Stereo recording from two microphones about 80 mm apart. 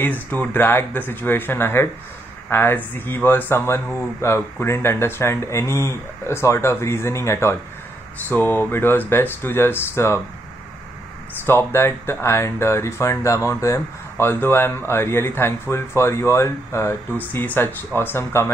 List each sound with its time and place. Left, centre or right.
0.0 s speech: left
11.4 s speech: left
17.2 s speech: left